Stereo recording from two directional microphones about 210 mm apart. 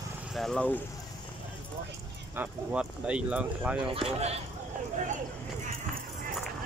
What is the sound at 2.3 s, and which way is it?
Speech, 5° right (ahead or behind).